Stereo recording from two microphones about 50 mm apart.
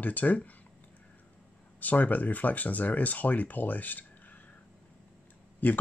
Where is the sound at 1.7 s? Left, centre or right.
Left.